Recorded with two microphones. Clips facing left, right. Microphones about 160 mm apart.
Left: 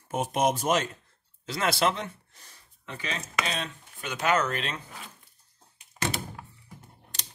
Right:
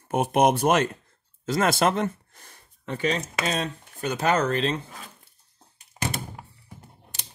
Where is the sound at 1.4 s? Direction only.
45° right (ahead or behind).